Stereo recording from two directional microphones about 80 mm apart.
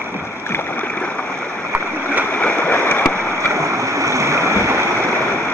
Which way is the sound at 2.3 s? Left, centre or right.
Left.